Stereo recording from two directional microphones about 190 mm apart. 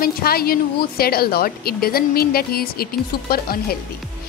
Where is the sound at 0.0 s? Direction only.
55° left (ahead or behind).